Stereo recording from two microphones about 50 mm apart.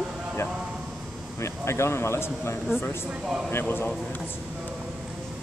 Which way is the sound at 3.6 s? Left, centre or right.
Left.